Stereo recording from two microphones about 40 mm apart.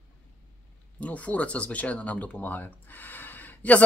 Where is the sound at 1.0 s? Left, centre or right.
Left.